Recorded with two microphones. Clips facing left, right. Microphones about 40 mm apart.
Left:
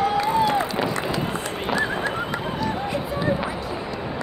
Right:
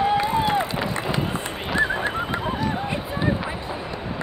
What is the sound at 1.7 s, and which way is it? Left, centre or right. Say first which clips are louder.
Goose: right 2 dB; right.